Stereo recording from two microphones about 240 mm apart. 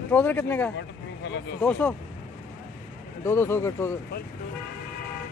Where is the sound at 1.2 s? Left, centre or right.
Left.